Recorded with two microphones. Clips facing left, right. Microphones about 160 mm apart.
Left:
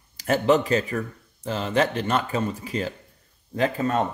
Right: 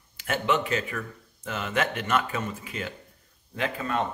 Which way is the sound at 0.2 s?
40° left (ahead or behind).